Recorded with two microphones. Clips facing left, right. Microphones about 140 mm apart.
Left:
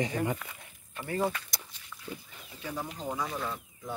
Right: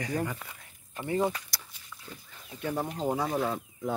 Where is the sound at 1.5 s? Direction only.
20° left (ahead or behind).